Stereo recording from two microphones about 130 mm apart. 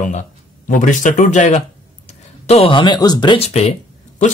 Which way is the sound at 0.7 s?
80° left.